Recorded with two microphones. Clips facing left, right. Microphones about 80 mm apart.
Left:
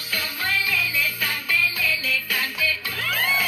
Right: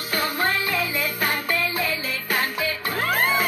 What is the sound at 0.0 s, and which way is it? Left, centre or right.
Music, right.